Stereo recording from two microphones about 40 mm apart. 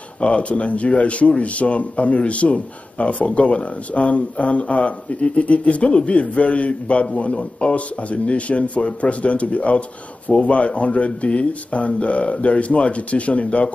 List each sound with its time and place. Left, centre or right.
0.2 s speech: left